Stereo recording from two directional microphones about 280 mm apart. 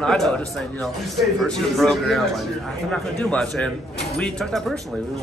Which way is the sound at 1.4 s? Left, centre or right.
Centre.